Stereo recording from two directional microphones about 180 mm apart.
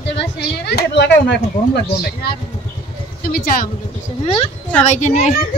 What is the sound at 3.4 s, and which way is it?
Speech, 50° left (ahead or behind).